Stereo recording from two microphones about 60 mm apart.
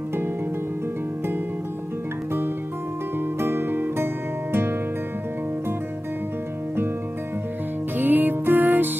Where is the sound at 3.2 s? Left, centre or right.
Right.